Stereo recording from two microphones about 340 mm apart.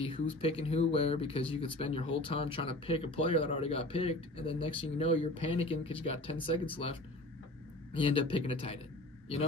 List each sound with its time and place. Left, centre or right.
0.0 s speech: centre